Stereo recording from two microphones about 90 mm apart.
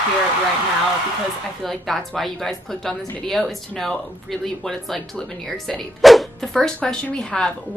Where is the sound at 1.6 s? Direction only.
Centre (ahead or behind).